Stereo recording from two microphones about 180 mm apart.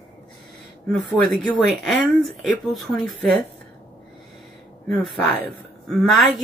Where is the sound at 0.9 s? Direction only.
Centre (ahead or behind).